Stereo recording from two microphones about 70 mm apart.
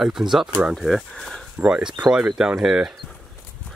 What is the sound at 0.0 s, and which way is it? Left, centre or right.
Speech, centre.